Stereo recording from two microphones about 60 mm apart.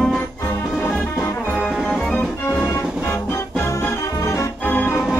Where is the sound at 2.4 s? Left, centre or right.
Left.